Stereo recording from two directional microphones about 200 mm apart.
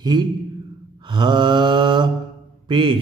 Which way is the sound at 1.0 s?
25° right (ahead or behind).